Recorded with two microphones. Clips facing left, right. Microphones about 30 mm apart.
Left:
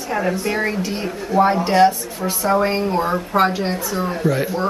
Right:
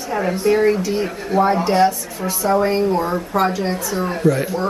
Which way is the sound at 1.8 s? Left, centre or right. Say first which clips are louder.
Left 2 dB; left.